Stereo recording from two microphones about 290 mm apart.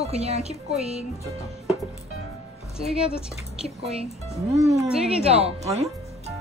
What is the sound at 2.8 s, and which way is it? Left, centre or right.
Speech, centre.